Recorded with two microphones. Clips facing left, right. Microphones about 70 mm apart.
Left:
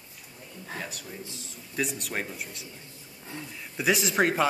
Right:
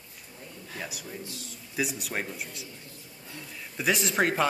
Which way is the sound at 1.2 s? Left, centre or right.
Left.